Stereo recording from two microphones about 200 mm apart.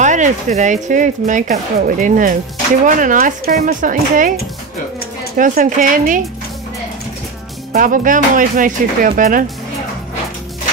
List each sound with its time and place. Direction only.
0.0 s speech: 35° right (ahead or behind)
5.4 s speech: 40° right (ahead or behind)
7.7 s speech: 40° right (ahead or behind)